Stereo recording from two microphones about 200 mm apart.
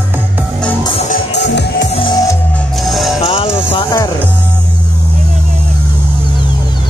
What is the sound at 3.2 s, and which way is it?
Music, 30° left (ahead or behind).